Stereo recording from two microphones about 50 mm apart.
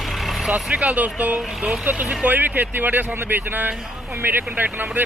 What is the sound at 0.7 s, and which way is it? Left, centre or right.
Speech, right.